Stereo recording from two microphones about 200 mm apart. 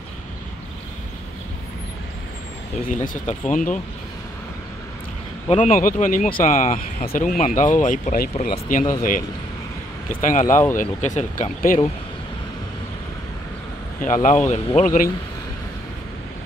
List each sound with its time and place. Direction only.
2.9 s speech: 40° left (ahead or behind)
5.5 s speech: 40° left (ahead or behind)
10.0 s speech: 40° left (ahead or behind)
13.9 s speech: 40° left (ahead or behind)